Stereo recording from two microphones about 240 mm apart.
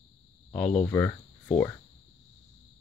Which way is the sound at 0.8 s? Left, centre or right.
Centre.